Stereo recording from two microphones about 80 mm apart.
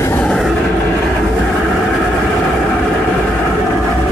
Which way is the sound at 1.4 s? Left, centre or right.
Centre.